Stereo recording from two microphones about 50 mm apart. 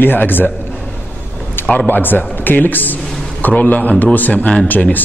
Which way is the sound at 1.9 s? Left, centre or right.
Left.